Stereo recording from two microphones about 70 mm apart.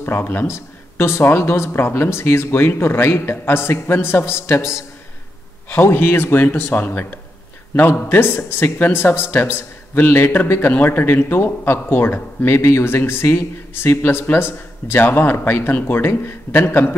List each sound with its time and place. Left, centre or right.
0.0 s a man's voice: left